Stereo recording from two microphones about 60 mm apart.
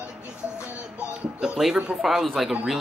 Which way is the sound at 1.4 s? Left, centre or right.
Centre.